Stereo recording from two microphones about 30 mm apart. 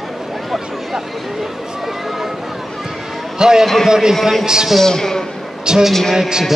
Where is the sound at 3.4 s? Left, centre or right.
Right.